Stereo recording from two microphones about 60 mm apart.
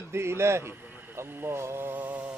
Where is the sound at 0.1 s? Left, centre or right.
Right.